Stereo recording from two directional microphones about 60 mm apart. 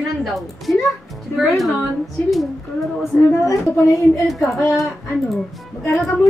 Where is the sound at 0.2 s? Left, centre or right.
Centre.